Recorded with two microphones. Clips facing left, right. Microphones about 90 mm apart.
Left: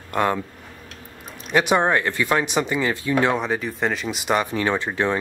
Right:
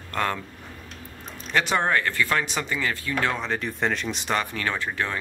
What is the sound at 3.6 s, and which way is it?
Speech, 5° left (ahead or behind).